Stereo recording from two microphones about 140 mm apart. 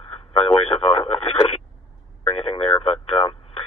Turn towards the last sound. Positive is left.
turn(degrees=40)  # may be behind; listen again after turning